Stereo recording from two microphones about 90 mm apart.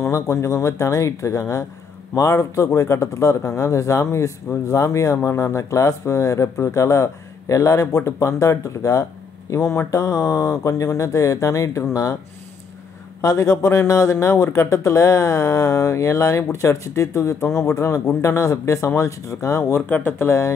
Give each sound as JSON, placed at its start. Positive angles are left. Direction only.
{"t": 0.0, "sound": "a man's voice", "side_deg": 30}
{"t": 13.2, "sound": "a man's voice", "side_deg": 40}